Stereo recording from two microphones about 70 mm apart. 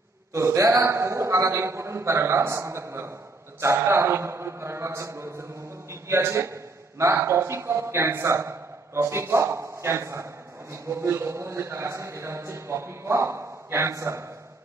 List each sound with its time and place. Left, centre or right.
0.3 s a man's voice: right